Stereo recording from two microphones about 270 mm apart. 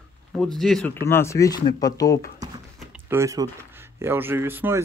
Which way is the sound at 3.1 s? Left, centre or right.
Centre.